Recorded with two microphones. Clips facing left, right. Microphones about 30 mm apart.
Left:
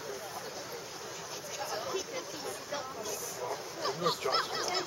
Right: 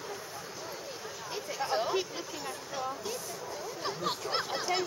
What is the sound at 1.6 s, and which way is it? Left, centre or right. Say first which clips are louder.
Speech: right 6 dB; right.